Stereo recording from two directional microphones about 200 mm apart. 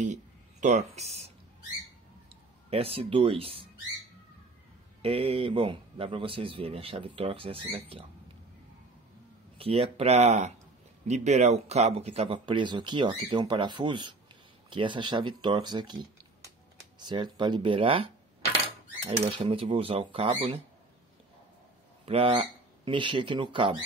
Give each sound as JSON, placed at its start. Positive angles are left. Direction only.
{"t": 0.0, "sound": "speech", "side_deg": -35}
{"t": 2.7, "sound": "a man's voice", "side_deg": -30}
{"t": 5.0, "sound": "a man's voice", "side_deg": -30}
{"t": 9.6, "sound": "a man's voice", "side_deg": -30}
{"t": 22.0, "sound": "speech", "side_deg": -30}